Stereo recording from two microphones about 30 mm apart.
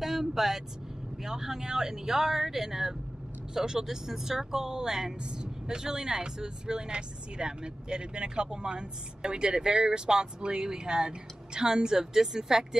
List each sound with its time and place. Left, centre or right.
0.0 s vehicle: centre
1.2 s speech: centre